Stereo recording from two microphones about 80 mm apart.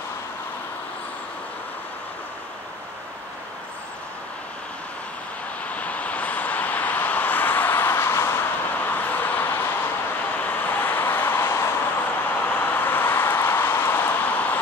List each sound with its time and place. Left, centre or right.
5.6 s vehicle: centre